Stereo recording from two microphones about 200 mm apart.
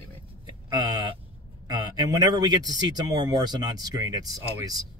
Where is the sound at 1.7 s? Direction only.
20° right (ahead or behind).